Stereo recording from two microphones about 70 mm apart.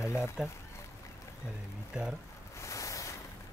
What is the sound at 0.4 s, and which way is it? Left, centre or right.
Speech, centre.